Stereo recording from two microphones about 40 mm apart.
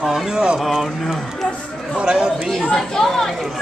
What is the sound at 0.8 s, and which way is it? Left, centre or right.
Speech, centre.